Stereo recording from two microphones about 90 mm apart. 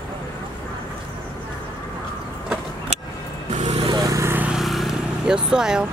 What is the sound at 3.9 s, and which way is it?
Vehicle, 45° right (ahead or behind).